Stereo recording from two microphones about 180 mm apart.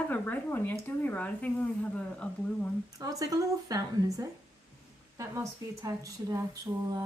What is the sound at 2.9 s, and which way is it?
Speech, 20° right (ahead or behind).